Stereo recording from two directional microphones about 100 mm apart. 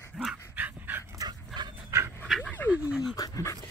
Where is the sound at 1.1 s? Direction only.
45° right (ahead or behind).